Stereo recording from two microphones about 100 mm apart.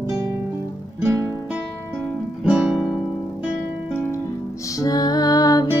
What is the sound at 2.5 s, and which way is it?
Music, 10° right (ahead or behind).